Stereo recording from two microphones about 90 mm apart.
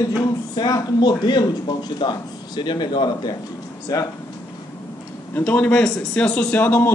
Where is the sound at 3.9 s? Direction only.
40° left (ahead or behind).